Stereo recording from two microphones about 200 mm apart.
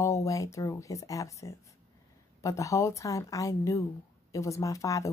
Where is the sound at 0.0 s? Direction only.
15° left (ahead or behind).